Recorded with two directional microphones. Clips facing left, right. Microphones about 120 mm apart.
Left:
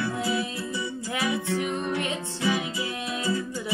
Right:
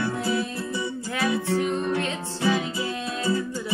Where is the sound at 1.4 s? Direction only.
30° right (ahead or behind).